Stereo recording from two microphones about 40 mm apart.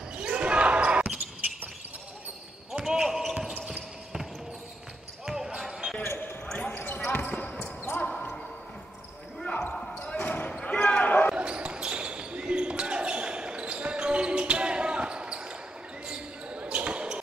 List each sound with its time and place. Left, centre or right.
0.2 s basketball bounce: right
2.7 s basketball bounce: centre
5.2 s basketball bounce: centre
6.0 s basketball bounce: left
7.5 s basketball bounce: centre
10.1 s basketball bounce: left
10.5 s basketball bounce: left
11.3 s basketball bounce: right